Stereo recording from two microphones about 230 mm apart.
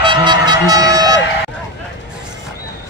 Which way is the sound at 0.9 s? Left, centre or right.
Centre.